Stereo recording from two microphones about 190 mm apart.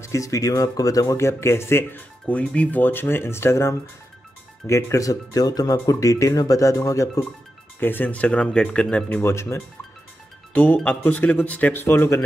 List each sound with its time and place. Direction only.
0.0 s speech: 15° left (ahead or behind)